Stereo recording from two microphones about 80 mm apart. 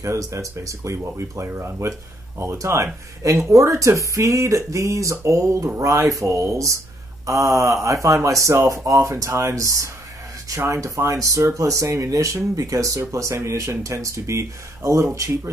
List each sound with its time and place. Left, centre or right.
0.0 s speech: right